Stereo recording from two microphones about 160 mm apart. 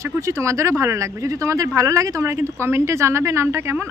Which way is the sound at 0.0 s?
20° right (ahead or behind).